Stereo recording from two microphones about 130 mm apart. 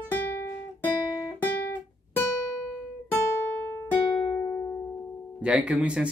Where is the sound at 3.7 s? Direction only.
15° left (ahead or behind).